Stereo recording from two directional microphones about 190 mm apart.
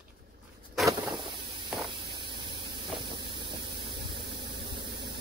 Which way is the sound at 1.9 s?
25° right (ahead or behind).